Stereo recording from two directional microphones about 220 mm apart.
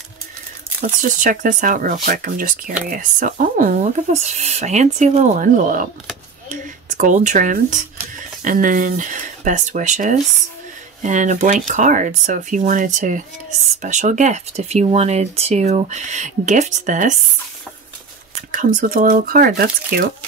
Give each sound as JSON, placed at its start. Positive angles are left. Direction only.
{"t": 0.7, "sound": "speech", "side_deg": -40}
{"t": 18.5, "sound": "speech", "side_deg": -35}